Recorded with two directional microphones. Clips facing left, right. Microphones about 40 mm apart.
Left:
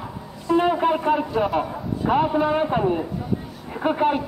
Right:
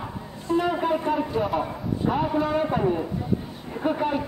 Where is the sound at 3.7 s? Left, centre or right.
Left.